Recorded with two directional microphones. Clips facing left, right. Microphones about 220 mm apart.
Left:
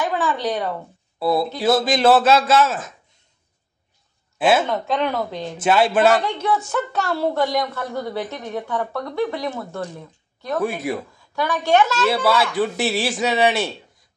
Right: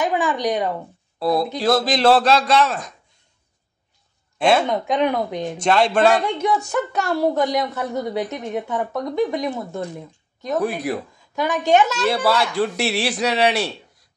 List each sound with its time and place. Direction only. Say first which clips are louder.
0.0 s a woman's voice: right 2 dB; 15° right (ahead or behind)
1.6 s a man's voice: left 1 dB; 5° left (ahead or behind)
4.4 s speech: even; 5° left (ahead or behind)
4.6 s a woman's voice: right 2 dB; 15° right (ahead or behind)
5.6 s a man's voice: even; 5° left (ahead or behind)
6.2 s a woman's voice: right 1 dB; 15° right (ahead or behind)
10.6 s a man's voice: even; centre (ahead or behind)
11.3 s a woman's voice: right 1 dB; 20° right (ahead or behind)
12.0 s a man's voice: even; centre (ahead or behind)